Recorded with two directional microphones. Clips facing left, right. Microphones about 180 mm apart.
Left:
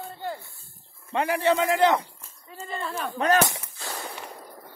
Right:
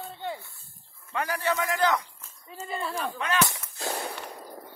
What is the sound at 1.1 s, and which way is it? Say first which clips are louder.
A man's voice: left 6 dB; 25° left (ahead or behind).